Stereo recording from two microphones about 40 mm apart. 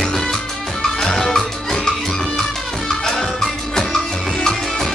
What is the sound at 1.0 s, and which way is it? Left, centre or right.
Music, centre.